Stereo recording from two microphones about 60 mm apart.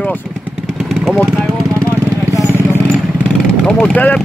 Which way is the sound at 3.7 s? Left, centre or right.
Centre.